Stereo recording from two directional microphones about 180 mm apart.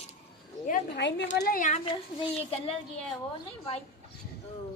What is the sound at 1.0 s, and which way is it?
Speech, 75° left (ahead or behind).